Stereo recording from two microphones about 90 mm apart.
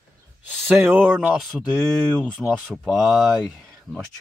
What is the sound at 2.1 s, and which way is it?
Speech, 10° left (ahead or behind).